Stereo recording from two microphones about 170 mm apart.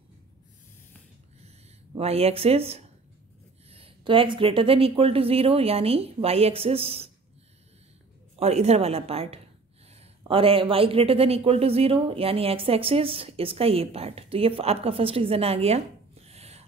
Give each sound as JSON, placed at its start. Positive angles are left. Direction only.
{"t": 2.0, "sound": "speech", "side_deg": -35}
{"t": 8.4, "sound": "speech", "side_deg": -40}